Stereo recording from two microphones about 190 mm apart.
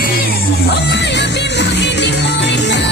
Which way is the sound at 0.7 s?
65° left (ahead or behind).